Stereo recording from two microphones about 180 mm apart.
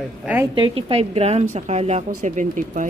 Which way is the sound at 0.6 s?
30° right (ahead or behind).